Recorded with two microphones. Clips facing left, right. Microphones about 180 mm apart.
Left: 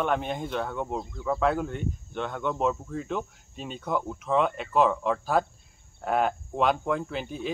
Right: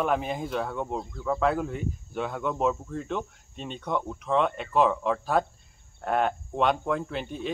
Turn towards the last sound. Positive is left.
turn(degrees=0)  # may be behind; listen again after turning